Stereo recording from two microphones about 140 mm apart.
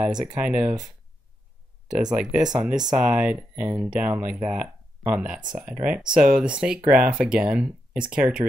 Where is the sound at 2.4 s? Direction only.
30° right (ahead or behind).